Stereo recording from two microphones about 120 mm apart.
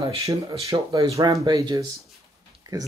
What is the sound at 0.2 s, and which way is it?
Speech, 30° right (ahead or behind).